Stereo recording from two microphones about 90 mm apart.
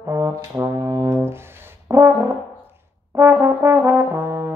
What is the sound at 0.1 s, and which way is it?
Brass instrument, 40° right (ahead or behind).